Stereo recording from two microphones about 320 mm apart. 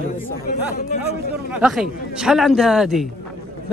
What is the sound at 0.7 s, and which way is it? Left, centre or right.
Speech, left.